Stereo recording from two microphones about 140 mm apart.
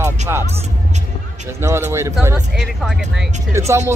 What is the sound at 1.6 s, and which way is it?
Speech, 20° right (ahead or behind).